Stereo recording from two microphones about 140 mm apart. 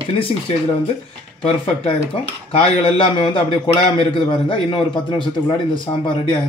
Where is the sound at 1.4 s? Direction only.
45° left (ahead or behind).